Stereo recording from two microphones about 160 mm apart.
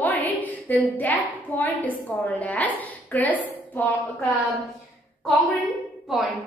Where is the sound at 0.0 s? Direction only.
10° left (ahead or behind).